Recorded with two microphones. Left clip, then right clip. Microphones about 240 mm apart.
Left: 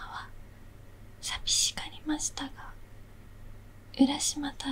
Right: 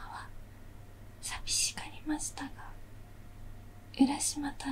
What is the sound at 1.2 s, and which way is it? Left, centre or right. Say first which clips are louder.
Whispering: left 5 dB; left.